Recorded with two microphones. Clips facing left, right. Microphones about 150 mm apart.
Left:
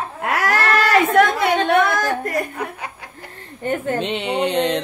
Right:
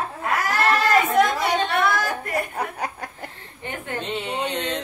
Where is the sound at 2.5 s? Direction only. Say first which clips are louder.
Right 1 dB; 40° right (ahead or behind).